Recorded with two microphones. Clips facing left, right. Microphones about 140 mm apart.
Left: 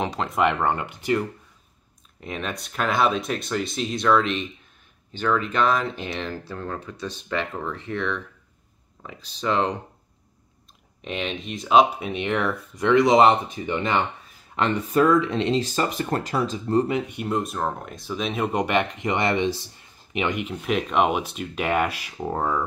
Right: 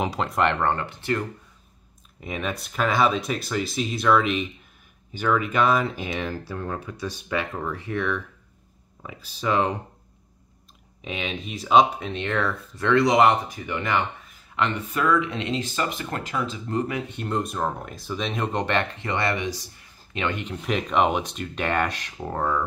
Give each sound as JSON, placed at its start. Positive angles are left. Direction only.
{"t": 0.0, "sound": "speech", "side_deg": -5}
{"t": 2.1, "sound": "speech", "side_deg": -5}
{"t": 11.0, "sound": "speech", "side_deg": 0}
{"t": 17.1, "sound": "speech", "side_deg": 5}